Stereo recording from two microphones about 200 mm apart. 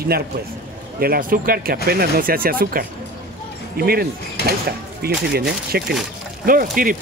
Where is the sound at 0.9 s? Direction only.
50° right (ahead or behind).